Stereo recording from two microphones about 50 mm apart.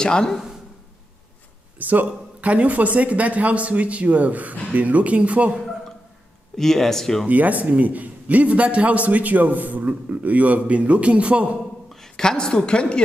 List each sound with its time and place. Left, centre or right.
0.0 s speech: centre
1.8 s a man's voice: right
6.5 s speech: centre
7.2 s a man's voice: right
11.9 s a woman's voice: centre